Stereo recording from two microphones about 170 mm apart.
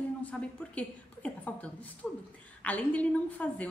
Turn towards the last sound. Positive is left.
turn(degrees=10)  # may be behind; listen again after turning